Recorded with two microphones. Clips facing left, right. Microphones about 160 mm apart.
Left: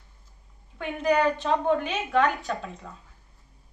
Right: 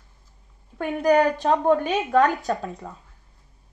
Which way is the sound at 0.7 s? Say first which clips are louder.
Right 5 dB; 40° right (ahead or behind).